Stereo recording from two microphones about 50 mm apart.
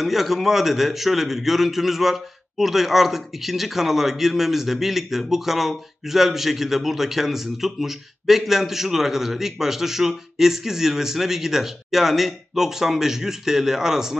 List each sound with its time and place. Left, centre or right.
0.0 s a man's voice: centre